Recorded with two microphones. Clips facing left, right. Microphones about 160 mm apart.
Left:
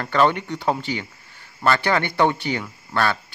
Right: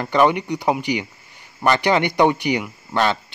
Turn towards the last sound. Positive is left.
turn(degrees=-20)  # may be behind; listen again after turning